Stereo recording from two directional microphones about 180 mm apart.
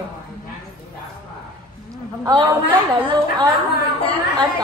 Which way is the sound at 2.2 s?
25° right (ahead or behind).